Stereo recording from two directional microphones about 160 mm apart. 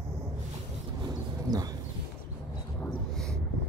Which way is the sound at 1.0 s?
25° right (ahead or behind).